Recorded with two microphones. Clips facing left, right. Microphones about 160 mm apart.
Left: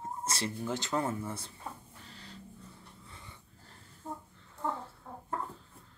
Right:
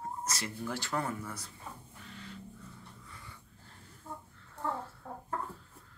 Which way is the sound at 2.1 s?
35° left (ahead or behind).